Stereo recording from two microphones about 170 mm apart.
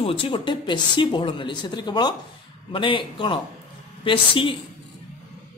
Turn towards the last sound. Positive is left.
turn(degrees=30)  # may be behind; listen again after turning